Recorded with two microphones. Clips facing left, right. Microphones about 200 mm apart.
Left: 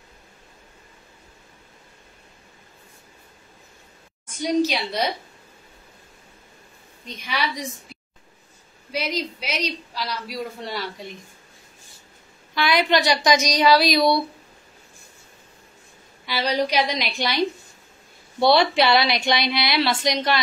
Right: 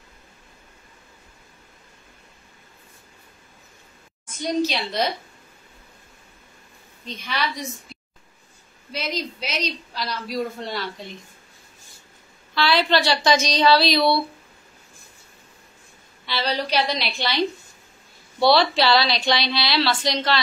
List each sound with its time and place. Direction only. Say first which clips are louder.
4.4 s a man's voice: left 2 dB; 10° left (ahead or behind)
7.1 s a man's voice: even; 10° left (ahead or behind)
8.9 s a man's voice: left 2 dB; 10° left (ahead or behind)
12.5 s a man's voice: even; 15° left (ahead or behind)
16.3 s a man's voice: left 2 dB; 10° left (ahead or behind)
18.4 s speech: even; 20° left (ahead or behind)